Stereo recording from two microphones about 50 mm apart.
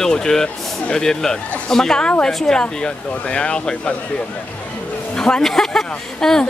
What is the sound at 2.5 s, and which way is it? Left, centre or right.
Speech, centre.